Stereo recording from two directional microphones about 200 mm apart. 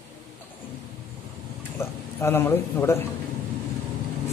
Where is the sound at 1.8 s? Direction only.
10° left (ahead or behind).